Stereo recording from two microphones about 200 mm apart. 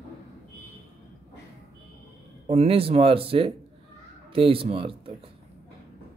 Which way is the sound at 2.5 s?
30° right (ahead or behind).